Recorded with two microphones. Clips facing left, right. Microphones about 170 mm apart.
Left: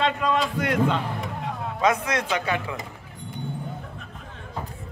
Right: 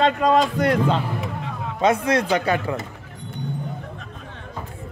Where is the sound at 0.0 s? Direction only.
40° right (ahead or behind).